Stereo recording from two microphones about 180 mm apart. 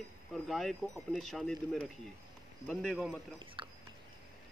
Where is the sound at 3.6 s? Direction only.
30° right (ahead or behind).